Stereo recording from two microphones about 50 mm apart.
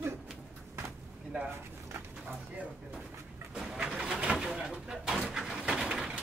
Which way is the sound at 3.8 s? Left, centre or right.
Centre.